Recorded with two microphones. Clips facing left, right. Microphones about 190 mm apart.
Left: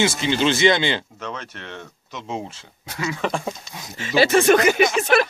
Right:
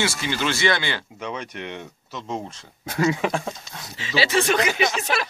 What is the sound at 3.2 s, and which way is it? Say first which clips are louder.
Speech: even; 5° right (ahead or behind).